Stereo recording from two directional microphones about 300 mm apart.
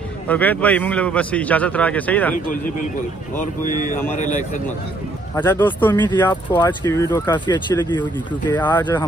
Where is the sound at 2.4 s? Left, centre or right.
Left.